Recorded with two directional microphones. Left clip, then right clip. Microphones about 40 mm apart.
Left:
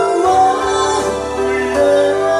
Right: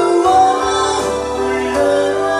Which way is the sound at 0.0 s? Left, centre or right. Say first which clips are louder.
Right 1 dB; centre.